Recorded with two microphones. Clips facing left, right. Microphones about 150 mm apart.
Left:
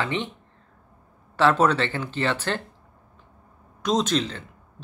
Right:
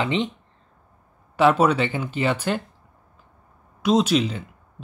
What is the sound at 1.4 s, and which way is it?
Speech, 10° right (ahead or behind).